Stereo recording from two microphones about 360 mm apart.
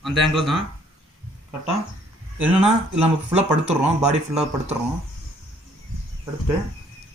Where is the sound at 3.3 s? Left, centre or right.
Centre.